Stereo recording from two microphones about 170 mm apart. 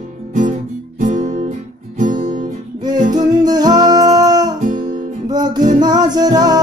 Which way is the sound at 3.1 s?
25° right (ahead or behind).